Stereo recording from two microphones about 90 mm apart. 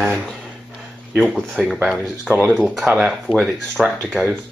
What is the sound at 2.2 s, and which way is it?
Speech, 15° right (ahead or behind).